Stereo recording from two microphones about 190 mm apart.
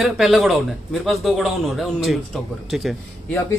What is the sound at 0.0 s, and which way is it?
Speech, centre (ahead or behind).